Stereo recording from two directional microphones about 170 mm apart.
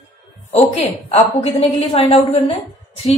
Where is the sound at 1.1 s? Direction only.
35° left (ahead or behind).